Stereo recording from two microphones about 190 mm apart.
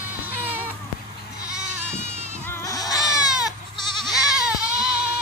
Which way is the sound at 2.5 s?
15° left (ahead or behind).